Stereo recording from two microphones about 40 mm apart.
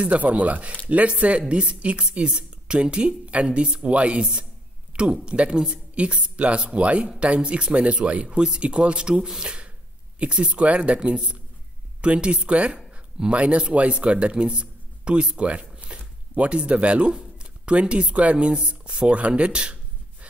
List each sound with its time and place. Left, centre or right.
0.0 s a woman's voice: right
15.7 s a sound: right
17.4 s speech: right